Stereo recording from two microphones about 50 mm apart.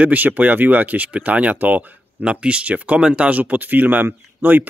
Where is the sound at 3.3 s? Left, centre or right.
Right.